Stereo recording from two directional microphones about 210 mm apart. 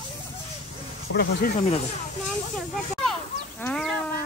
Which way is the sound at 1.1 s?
80° left.